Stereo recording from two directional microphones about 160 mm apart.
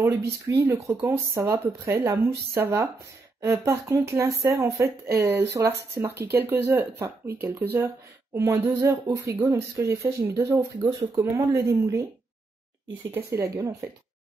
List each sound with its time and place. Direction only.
0.0 s speech: 20° right (ahead or behind)
13.1 s speech: 15° right (ahead or behind)